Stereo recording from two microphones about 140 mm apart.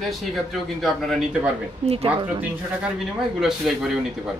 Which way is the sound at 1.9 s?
45° right (ahead or behind).